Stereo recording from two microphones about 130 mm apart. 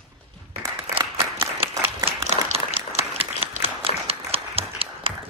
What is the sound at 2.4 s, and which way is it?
Applause, 55° right (ahead or behind).